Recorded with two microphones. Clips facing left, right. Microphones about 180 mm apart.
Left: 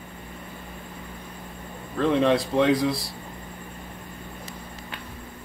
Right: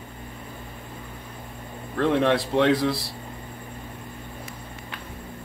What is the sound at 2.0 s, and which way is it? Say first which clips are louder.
Speech: even; 65° right (ahead or behind).